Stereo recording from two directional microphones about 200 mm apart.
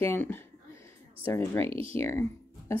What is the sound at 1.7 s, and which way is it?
Speech, 30° right (ahead or behind).